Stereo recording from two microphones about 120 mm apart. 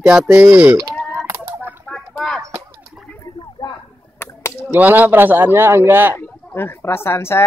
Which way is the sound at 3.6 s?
35° left (ahead or behind).